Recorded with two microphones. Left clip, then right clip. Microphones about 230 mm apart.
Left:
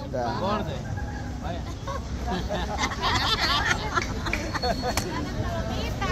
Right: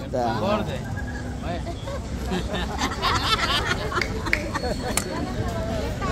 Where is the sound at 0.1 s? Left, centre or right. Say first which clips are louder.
Right 4 dB; right.